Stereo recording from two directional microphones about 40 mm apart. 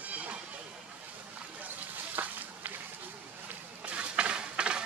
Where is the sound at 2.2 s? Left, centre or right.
Right.